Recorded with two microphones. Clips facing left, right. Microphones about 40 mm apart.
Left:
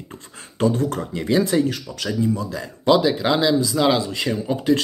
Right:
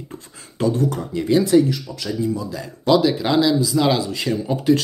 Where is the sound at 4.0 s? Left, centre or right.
Left.